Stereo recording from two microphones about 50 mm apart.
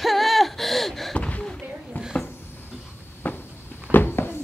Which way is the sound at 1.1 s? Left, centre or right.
Left.